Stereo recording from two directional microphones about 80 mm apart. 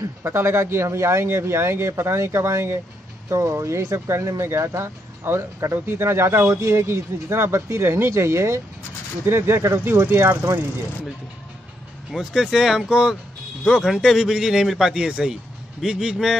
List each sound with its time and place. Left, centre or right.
0.3 s speech: right
12.1 s a man's voice: centre